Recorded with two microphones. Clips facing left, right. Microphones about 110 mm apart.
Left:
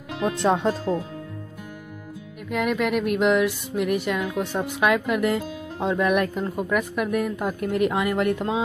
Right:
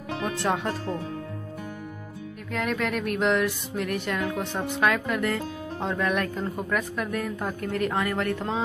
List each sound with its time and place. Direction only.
0.2 s speech: 25° left (ahead or behind)
2.5 s speech: 10° left (ahead or behind)